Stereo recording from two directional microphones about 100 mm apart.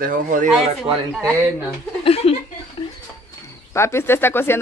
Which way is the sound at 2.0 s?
80° left.